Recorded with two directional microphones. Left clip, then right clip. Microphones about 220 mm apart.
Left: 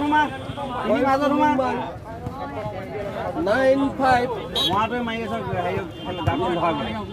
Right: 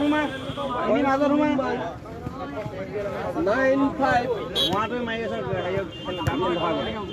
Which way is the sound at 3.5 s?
50° left (ahead or behind).